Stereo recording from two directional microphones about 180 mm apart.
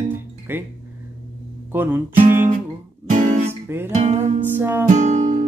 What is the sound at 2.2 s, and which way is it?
Guitar, 50° right (ahead or behind).